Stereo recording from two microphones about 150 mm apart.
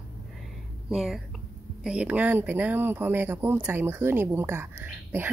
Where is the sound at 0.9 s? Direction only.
Centre (ahead or behind).